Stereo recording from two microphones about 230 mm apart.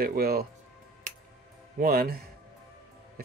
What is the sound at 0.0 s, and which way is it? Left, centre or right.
Speech, right.